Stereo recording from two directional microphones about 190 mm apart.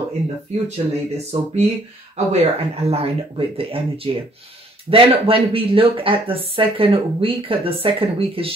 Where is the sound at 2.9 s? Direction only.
30° right (ahead or behind).